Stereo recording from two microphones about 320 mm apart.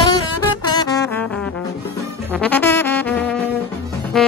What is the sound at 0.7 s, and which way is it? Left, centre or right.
Brass instrument, centre.